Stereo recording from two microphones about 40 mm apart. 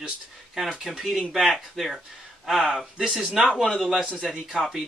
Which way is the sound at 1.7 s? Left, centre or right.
Centre.